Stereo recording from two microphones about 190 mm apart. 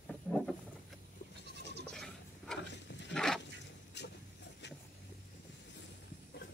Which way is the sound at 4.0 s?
65° left (ahead or behind).